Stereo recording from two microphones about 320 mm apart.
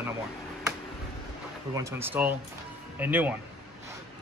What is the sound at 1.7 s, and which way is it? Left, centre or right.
Speech, centre.